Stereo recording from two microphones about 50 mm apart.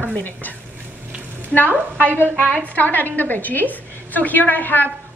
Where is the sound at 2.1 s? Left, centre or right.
Right.